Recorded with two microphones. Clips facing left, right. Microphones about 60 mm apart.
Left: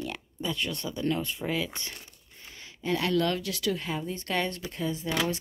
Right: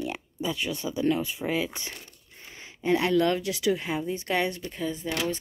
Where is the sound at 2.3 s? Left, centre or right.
Right.